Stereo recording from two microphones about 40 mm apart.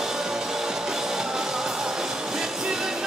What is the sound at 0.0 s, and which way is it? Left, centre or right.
Music, centre.